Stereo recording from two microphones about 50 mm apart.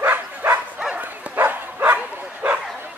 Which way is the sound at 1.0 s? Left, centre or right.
Right.